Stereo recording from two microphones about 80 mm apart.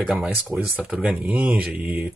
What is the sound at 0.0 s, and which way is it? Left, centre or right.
Speech, centre.